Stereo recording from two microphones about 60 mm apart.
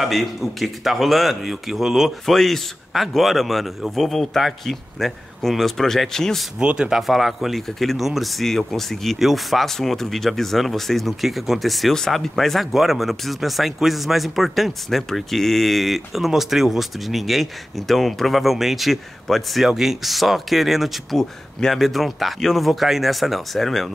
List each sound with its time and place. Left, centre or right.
0.0 s speech: centre
6.6 s speech: centre
6.9 s speech: centre